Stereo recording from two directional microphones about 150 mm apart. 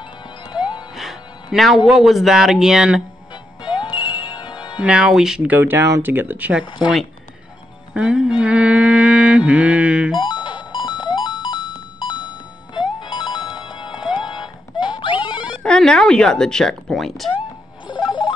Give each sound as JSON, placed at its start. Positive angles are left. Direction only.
{"t": 0.9, "sound": "music", "side_deg": 0}
{"t": 1.9, "sound": "speech", "side_deg": 0}
{"t": 3.6, "sound": "music", "side_deg": 30}
{"t": 4.7, "sound": "speech", "side_deg": -5}
{"t": 6.8, "sound": "speech", "side_deg": 0}
{"t": 7.9, "sound": "mantra", "side_deg": -5}
{"t": 10.1, "sound": "music", "side_deg": 30}
{"t": 13.0, "sound": "music", "side_deg": 30}
{"t": 15.6, "sound": "speech", "side_deg": 5}
{"t": 17.8, "sound": "a sound", "side_deg": 30}